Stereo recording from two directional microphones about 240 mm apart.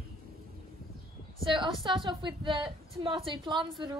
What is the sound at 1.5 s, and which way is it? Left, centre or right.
A woman's voice, centre.